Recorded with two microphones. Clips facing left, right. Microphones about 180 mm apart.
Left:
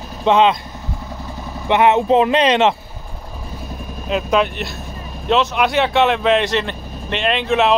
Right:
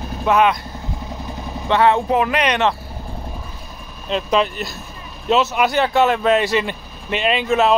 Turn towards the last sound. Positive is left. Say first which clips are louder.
# even
turn(degrees=0)  # may be behind; listen again after turning